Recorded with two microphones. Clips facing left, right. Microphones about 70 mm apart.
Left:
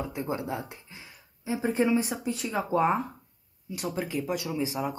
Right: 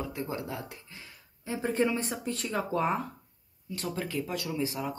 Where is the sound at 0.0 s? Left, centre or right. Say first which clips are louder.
Left 3 dB; left.